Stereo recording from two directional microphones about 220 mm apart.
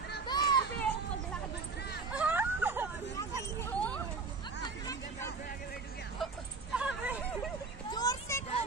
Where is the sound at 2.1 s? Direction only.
5° right (ahead or behind).